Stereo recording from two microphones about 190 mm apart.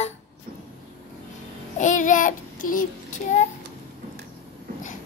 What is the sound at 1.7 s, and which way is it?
Child singing, 40° left (ahead or behind).